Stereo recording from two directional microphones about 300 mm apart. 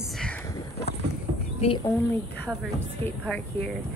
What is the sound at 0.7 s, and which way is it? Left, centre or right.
Boat, left.